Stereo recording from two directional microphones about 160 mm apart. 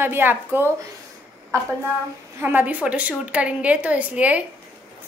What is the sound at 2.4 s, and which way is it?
A woman's voice, 10° right (ahead or behind).